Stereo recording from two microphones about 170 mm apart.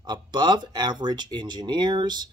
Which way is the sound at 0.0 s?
25° right (ahead or behind).